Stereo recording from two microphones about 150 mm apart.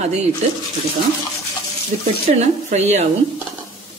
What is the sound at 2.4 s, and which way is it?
Speech, 50° right (ahead or behind).